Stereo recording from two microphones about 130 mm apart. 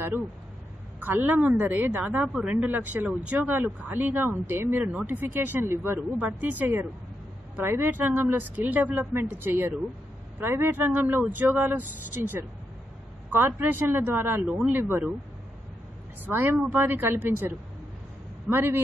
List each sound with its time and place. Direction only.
1.0 s a woman's voice: 15° right (ahead or behind)
16.3 s a woman's voice: 15° right (ahead or behind)